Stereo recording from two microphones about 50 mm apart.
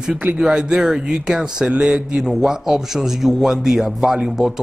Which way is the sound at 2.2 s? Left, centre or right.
Centre.